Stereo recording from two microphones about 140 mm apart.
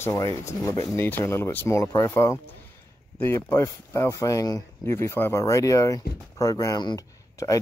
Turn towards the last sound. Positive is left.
turn(degrees=25)  # may be behind; listen again after turning